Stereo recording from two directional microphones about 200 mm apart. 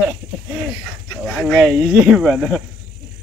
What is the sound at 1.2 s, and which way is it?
Speech, centre (ahead or behind).